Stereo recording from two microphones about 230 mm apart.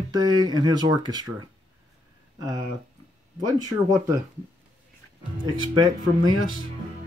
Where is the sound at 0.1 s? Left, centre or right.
Centre.